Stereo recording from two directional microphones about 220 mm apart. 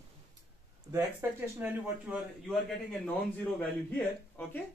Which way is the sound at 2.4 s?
5° left (ahead or behind).